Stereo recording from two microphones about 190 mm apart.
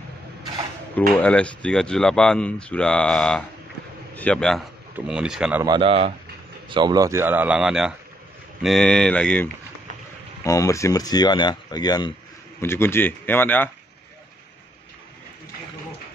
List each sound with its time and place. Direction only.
1.2 s speech: 5° left (ahead or behind)
5.6 s speech: 25° right (ahead or behind); by 9.5 s 5° left (ahead or behind)
10.4 s speech: 15° left (ahead or behind)